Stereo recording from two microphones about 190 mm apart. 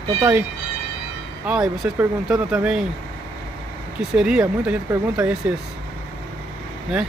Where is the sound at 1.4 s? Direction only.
5° right (ahead or behind).